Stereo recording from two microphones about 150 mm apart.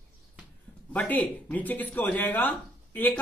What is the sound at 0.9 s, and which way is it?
Speech, 10° left (ahead or behind).